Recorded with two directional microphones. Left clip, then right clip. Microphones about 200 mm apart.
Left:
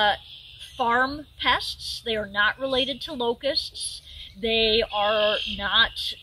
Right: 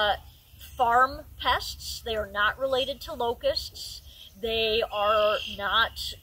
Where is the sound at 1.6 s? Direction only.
15° right (ahead or behind).